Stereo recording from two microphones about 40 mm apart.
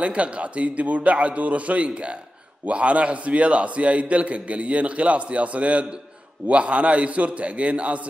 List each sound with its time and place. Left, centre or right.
0.0 s a man's voice: right